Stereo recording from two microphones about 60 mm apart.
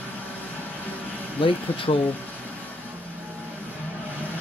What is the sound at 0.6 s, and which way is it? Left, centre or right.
Music, left.